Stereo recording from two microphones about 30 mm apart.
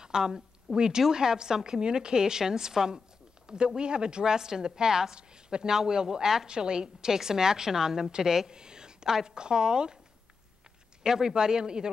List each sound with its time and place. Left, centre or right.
0.0 s a woman's voice: right
8.5 s a sound: right
9.1 s a woman's voice: right
11.0 s a woman's voice: right